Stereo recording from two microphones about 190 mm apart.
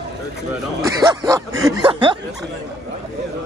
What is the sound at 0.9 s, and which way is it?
Speech, 15° right (ahead or behind).